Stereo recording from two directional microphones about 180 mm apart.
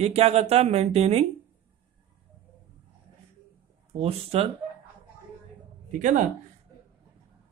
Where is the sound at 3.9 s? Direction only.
35° right (ahead or behind).